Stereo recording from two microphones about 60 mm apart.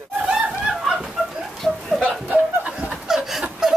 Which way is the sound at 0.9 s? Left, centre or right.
Centre.